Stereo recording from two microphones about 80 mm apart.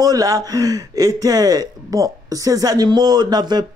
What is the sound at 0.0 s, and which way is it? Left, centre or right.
Speech, right.